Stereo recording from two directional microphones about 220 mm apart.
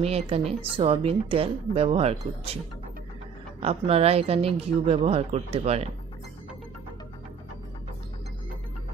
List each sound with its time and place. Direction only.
0.0 s a woman's voice: 30° right (ahead or behind)
3.6 s a woman's voice: 25° right (ahead or behind)